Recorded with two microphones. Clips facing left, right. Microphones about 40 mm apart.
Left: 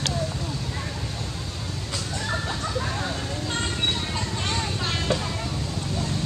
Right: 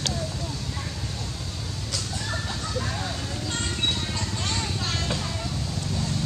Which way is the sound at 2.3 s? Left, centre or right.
Centre.